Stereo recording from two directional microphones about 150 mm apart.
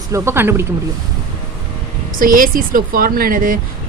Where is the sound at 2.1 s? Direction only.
65° right (ahead or behind).